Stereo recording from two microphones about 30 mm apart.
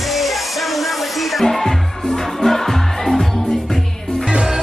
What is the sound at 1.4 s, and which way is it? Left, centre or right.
Music, centre.